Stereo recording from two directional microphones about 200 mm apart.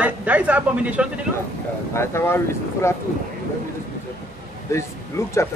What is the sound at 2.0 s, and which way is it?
Speech, 10° left (ahead or behind).